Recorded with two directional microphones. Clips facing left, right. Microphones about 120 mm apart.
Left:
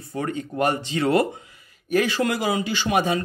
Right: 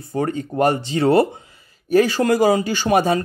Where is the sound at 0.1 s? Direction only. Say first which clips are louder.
Right 5 dB; 35° right (ahead or behind).